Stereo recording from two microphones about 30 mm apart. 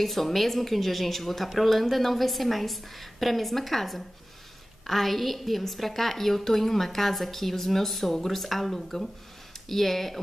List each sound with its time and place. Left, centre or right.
0.0 s a woman's voice: centre